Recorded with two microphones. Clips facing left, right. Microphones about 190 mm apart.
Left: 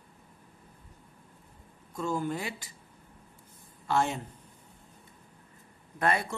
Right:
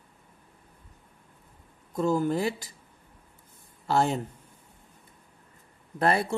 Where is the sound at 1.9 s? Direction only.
40° right (ahead or behind).